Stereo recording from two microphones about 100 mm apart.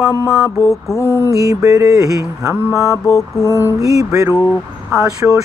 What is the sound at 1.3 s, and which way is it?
Mantra, 35° right (ahead or behind).